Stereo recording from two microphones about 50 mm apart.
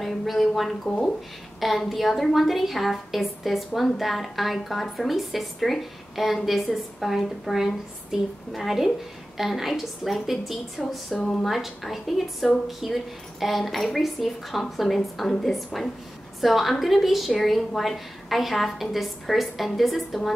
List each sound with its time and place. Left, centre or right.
0.0 s speech: centre
0.8 s speech: centre
1.6 s a woman's voice: centre